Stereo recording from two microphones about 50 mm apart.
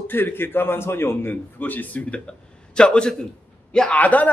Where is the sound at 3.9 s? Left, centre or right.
Left.